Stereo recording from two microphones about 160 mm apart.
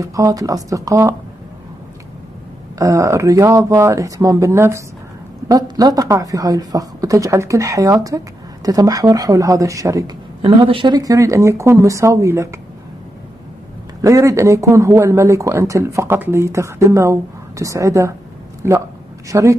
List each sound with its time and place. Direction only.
0.0 s a man's voice: 20° right (ahead or behind)
2.8 s a man's voice: 20° right (ahead or behind)
14.0 s a man's voice: 20° right (ahead or behind)